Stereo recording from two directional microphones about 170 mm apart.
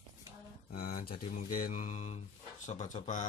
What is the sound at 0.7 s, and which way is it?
Speech, 60° left (ahead or behind).